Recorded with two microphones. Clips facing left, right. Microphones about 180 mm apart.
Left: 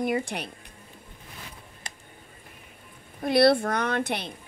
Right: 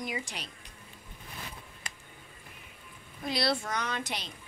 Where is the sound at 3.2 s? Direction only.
55° left (ahead or behind).